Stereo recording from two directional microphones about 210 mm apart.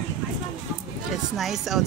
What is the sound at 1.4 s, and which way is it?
Speech, centre (ahead or behind).